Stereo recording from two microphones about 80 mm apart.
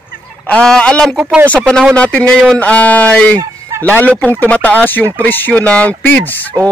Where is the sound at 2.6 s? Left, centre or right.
Centre.